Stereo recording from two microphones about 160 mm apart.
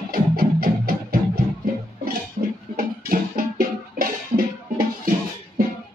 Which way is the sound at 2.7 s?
65° right (ahead or behind).